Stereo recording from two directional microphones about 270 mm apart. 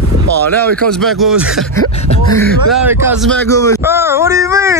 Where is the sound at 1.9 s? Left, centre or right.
Left.